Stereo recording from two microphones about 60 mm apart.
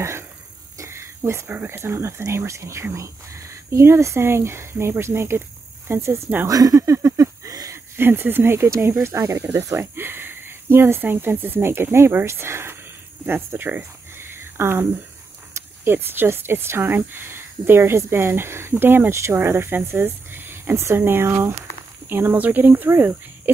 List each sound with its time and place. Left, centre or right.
0.7 s a sound: right
1.7 s speech: right
6.4 s speech: right
6.8 s a sound: right
7.9 s speech: right
9.5 s speech: right
9.9 s speech: right
13.6 s a sound: right
15.5 s speech: right